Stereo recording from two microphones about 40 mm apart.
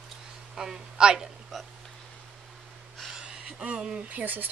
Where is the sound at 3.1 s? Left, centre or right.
Right.